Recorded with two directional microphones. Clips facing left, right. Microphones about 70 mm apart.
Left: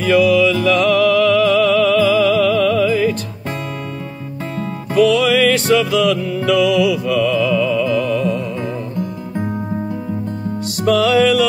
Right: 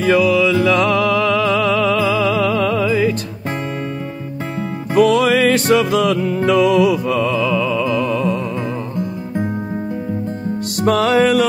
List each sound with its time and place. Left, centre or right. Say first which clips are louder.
0.0 s music: left 1 dB; right
4.6 s music: even; right
10.8 s music: left 1 dB; right